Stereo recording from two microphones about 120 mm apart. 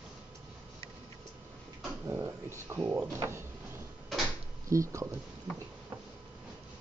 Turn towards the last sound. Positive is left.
turn(degrees=-25)  # may be behind; listen again after turning